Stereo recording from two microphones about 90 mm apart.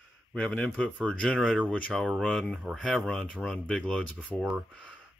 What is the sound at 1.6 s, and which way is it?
Speech, 15° left (ahead or behind).